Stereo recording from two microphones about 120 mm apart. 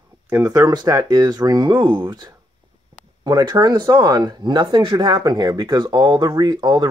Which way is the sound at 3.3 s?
35° right (ahead or behind).